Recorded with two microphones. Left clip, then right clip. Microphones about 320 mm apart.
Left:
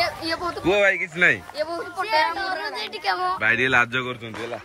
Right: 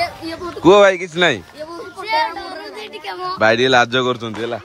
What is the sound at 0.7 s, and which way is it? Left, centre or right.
Speech, centre.